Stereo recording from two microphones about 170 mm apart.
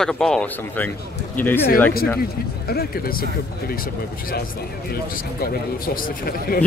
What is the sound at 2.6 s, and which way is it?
A man's voice, 60° left (ahead or behind).